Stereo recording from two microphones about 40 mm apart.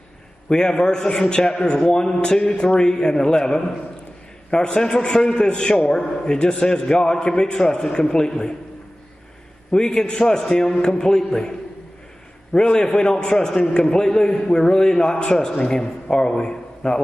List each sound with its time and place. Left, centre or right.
0.5 s a man's voice: centre
9.7 s a man's voice: centre
12.5 s a man's voice: left